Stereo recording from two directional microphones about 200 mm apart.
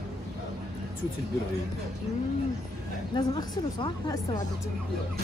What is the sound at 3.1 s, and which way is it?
Speech, 25° left (ahead or behind).